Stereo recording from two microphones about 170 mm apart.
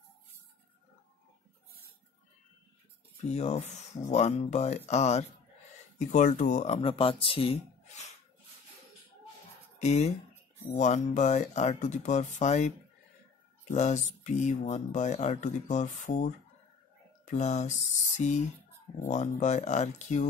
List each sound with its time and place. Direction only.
3.3 s speech: 40° left (ahead or behind)
9.8 s speech: 40° left (ahead or behind)